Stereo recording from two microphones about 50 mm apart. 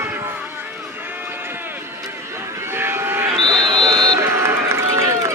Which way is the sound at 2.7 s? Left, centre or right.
Right.